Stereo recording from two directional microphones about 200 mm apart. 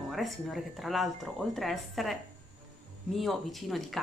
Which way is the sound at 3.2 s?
Centre (ahead or behind).